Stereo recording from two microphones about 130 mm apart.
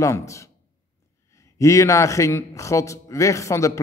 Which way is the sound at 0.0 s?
25° left (ahead or behind).